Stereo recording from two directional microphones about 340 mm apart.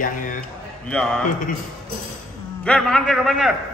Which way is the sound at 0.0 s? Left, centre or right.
Left.